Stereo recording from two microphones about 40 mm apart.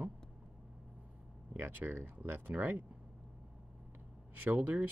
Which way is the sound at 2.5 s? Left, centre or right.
Right.